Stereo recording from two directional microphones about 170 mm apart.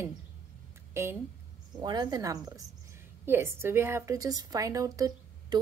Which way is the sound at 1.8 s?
25° right (ahead or behind).